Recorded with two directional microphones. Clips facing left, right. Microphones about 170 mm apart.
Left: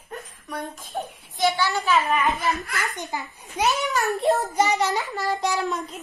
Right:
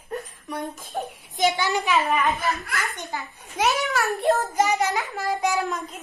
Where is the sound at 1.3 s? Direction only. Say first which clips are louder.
Even; 20° right (ahead or behind).